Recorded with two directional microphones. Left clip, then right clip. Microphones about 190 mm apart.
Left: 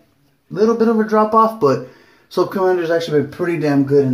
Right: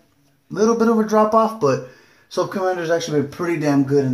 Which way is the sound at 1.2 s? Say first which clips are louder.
Left 5 dB; 5° right (ahead or behind).